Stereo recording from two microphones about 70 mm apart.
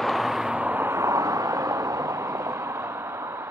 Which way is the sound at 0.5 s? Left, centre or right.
Right.